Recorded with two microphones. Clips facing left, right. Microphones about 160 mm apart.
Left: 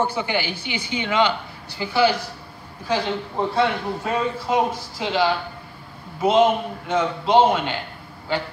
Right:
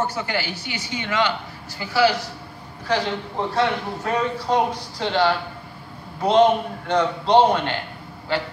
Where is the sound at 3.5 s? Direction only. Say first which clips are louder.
Even; 10° left (ahead or behind).